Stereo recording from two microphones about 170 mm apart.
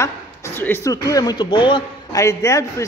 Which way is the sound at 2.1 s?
20° left (ahead or behind).